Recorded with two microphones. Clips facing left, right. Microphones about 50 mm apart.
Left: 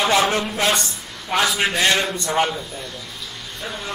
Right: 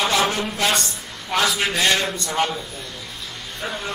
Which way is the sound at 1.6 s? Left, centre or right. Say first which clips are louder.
Left 1 dB; centre.